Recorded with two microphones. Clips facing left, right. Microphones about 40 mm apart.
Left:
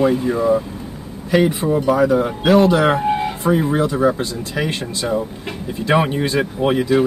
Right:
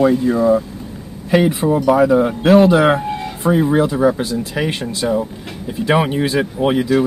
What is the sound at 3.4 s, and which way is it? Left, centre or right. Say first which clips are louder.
Speech: right 5 dB; centre.